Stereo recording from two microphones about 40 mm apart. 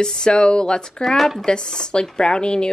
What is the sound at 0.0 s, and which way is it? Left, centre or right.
Speech, centre.